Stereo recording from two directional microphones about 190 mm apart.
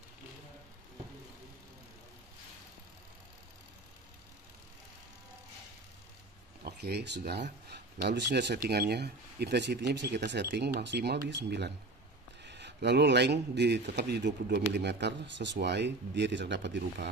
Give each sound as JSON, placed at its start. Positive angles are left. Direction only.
{"t": 6.6, "sound": "speech", "side_deg": -60}